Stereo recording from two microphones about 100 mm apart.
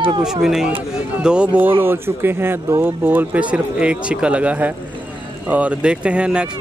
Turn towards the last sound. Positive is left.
turn(degrees=-10)  # may be behind; listen again after turning